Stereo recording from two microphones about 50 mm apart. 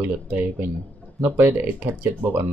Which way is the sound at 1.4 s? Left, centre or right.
Right.